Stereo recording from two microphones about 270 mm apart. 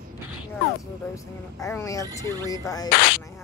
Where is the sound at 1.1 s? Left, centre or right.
Centre.